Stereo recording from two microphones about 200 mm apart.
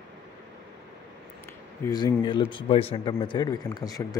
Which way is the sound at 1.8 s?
20° left (ahead or behind).